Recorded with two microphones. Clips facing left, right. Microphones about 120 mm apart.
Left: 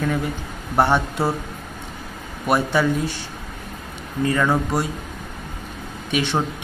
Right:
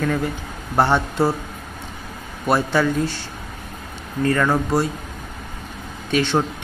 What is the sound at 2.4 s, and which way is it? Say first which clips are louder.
Speech: right 1 dB; 15° left (ahead or behind).